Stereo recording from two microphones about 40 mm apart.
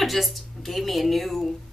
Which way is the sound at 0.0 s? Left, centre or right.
Centre.